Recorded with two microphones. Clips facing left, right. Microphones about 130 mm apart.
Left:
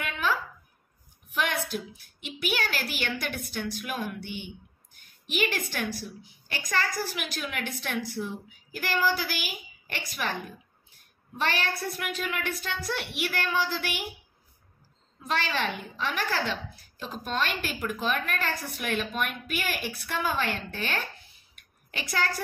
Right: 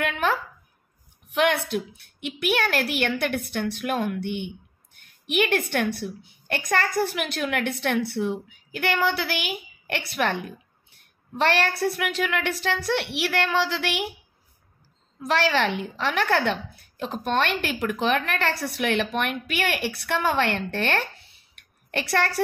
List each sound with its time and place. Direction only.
0.0 s a sound: 60° right (ahead or behind)
1.3 s a woman's voice: 65° right (ahead or behind)
15.2 s a woman's voice: 75° right (ahead or behind)